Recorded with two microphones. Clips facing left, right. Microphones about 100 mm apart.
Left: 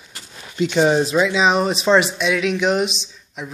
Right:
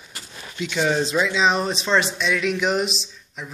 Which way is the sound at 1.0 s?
5° left (ahead or behind).